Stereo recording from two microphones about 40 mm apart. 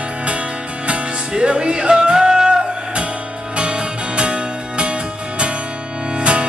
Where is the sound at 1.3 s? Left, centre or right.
Right.